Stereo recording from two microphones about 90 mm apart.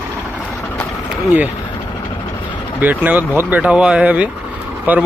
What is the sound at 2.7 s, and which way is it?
Speech, 20° right (ahead or behind).